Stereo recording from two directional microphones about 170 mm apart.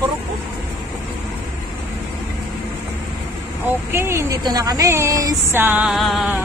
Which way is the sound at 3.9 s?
15° right (ahead or behind).